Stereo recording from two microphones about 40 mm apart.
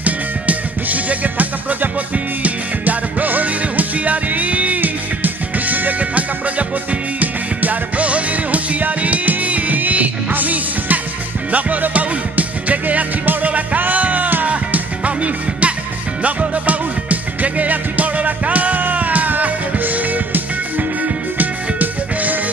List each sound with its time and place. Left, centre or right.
0.0 s music: right
4.7 s music: right